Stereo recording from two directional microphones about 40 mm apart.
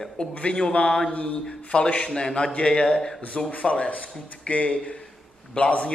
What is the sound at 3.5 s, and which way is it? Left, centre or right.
Speech, left.